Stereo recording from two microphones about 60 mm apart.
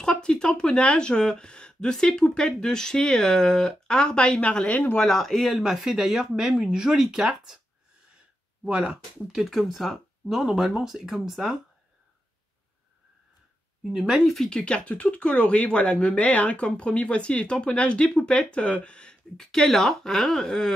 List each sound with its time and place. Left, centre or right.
0.0 s speech: centre
5.0 s speech: centre
8.6 s speech: centre
9.3 s speech: centre
13.8 s speech: centre
14.3 s speech: centre